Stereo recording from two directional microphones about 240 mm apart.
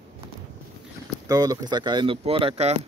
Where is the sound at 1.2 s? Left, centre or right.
Centre.